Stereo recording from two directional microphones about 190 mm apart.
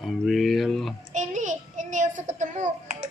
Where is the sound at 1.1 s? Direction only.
40° right (ahead or behind).